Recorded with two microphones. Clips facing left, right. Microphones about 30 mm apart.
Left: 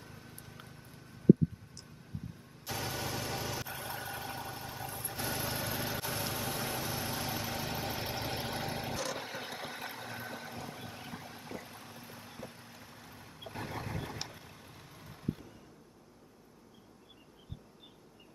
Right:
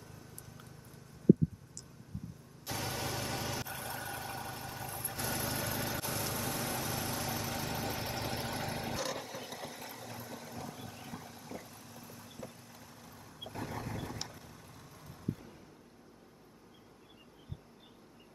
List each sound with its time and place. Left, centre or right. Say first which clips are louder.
0.0 s vehicle: left 2 dB; left
2.6 s vehicle: even; centre
9.2 s vehicle: left 2 dB; left